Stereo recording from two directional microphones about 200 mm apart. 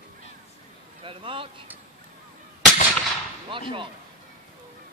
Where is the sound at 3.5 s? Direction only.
25° right (ahead or behind).